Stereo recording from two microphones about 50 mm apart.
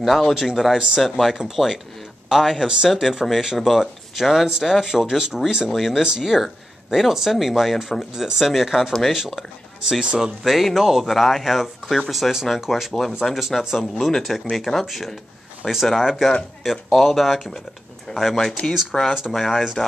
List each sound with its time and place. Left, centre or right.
0.0 s speech: centre
10.4 s speech: centre
18.1 s speech: centre
18.7 s speech: centre